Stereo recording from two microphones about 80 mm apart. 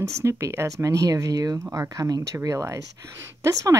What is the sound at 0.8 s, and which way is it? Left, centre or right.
Speech, right.